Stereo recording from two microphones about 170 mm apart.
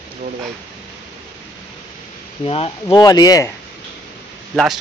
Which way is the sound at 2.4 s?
35° left (ahead or behind).